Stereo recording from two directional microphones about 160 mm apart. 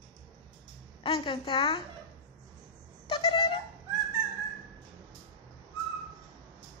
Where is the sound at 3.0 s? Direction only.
35° left (ahead or behind).